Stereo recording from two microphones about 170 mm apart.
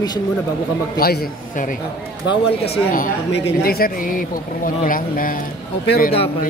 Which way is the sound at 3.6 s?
60° left (ahead or behind).